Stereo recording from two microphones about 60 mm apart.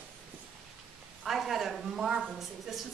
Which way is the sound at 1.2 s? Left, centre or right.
Centre.